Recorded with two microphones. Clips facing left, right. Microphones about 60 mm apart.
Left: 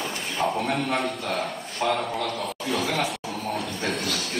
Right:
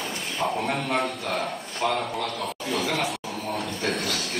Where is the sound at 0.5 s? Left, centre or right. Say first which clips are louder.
Even; centre.